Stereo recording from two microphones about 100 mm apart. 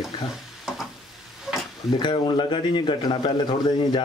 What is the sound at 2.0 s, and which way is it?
Speech, 50° left (ahead or behind).